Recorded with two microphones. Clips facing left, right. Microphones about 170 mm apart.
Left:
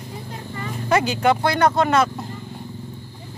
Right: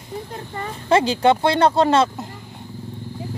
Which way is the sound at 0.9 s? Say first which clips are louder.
Right 3 dB; 30° right (ahead or behind).